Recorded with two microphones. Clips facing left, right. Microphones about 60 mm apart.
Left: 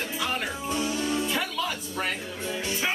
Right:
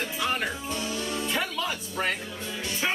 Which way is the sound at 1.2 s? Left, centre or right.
Centre.